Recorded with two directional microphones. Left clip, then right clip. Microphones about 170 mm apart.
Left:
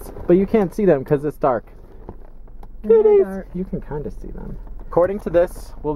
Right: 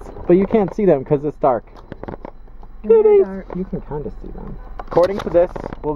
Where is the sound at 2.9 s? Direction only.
10° left (ahead or behind).